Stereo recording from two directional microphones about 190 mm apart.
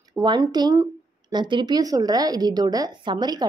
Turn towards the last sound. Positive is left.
turn(degrees=-20)  # may be behind; listen again after turning